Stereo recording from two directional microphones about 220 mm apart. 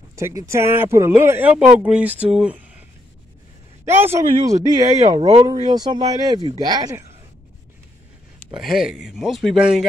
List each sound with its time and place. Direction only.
0.1 s speech: 15° right (ahead or behind)
3.8 s speech: 10° right (ahead or behind)
8.5 s speech: centre (ahead or behind)